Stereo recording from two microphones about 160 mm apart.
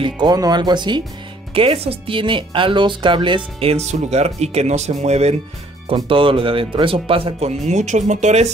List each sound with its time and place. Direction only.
0.0 s speech: 25° right (ahead or behind); by 8.5 s 45° right (ahead or behind)